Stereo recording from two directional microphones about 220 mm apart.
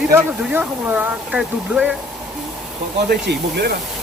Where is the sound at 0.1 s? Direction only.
10° right (ahead or behind).